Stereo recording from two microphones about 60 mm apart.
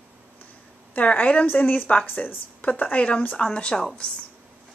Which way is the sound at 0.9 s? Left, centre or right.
Left.